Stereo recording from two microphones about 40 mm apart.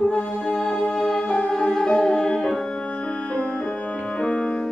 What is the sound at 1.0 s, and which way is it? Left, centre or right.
Music, centre.